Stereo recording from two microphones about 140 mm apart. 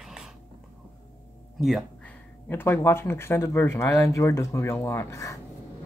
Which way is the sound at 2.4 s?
15° left (ahead or behind).